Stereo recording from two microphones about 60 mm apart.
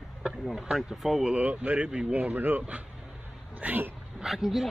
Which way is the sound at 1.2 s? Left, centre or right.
Right.